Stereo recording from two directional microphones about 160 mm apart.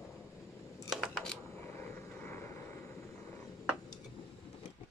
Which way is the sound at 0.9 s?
Centre (ahead or behind).